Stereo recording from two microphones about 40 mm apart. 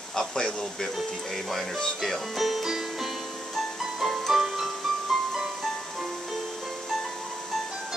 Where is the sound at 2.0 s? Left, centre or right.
Centre.